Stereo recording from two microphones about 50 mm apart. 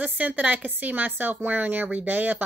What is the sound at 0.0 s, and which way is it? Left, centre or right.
Speech, right.